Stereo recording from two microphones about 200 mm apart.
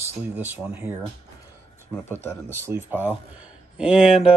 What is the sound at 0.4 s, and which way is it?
Speech, 10° right (ahead or behind).